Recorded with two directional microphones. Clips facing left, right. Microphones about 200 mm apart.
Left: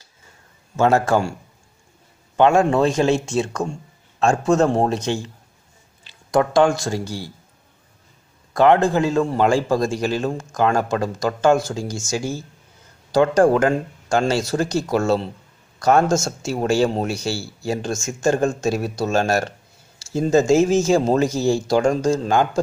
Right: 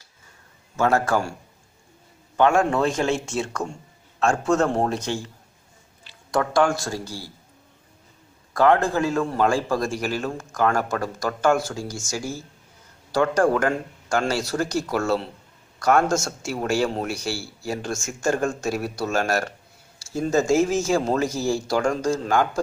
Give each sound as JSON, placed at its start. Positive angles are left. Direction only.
{"t": 0.7, "sound": "a man's voice", "side_deg": 25}
{"t": 2.3, "sound": "a man's voice", "side_deg": 20}
{"t": 6.3, "sound": "a man's voice", "side_deg": 20}
{"t": 8.5, "sound": "a man's voice", "side_deg": 20}
{"t": 13.1, "sound": "a man's voice", "side_deg": 25}